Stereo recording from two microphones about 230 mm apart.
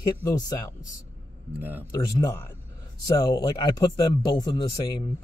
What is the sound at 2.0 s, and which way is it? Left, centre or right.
Speech, centre.